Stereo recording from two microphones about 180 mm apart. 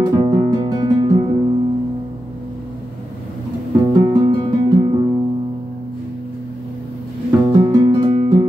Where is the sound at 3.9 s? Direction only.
25° right (ahead or behind).